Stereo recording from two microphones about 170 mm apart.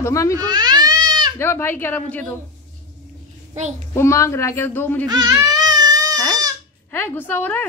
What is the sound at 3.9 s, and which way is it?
Speech, 15° left (ahead or behind).